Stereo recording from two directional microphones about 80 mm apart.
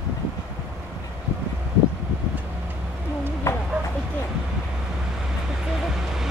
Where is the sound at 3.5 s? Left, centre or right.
Left.